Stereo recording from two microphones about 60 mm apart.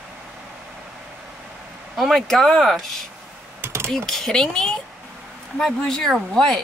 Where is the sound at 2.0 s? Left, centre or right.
Centre.